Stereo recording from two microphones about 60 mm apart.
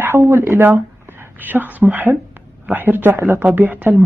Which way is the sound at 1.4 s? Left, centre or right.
Right.